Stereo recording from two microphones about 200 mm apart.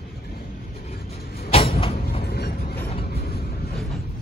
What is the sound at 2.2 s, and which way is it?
Vehicle, 50° left (ahead or behind).